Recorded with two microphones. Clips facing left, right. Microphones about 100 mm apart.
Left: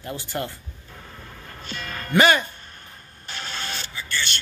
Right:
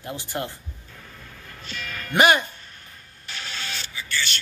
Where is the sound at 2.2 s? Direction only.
15° right (ahead or behind).